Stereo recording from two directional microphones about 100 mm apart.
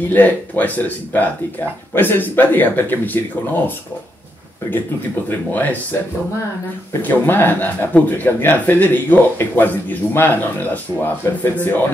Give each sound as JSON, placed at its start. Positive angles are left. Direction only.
{"t": 0.1, "sound": "speech", "side_deg": 15}
{"t": 5.3, "sound": "speech", "side_deg": 15}
{"t": 7.0, "sound": "speech", "side_deg": 20}